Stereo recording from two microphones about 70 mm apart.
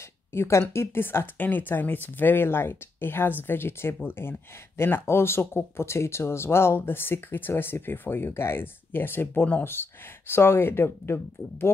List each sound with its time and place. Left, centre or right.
0.3 s speech: left